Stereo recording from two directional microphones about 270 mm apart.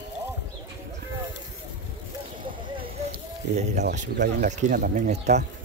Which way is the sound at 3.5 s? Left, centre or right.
Right.